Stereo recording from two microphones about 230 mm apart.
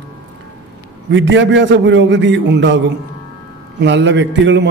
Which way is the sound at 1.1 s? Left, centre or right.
Right.